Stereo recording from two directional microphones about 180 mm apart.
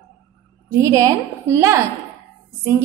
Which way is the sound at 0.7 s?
15° right (ahead or behind).